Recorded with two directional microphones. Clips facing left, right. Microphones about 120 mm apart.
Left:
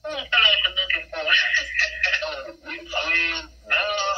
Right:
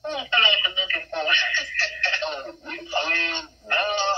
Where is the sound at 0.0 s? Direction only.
30° right (ahead or behind).